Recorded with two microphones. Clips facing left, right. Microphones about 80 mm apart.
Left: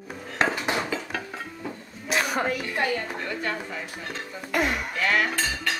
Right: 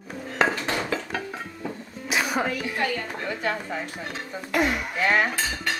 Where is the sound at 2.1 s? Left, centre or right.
Centre.